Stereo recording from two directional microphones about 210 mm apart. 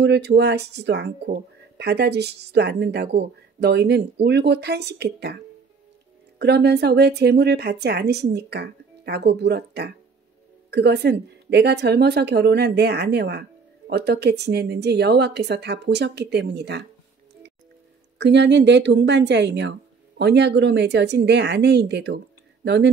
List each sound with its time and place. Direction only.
0.0 s a woman's voice: 55° right (ahead or behind)
18.1 s a woman's voice: 55° right (ahead or behind)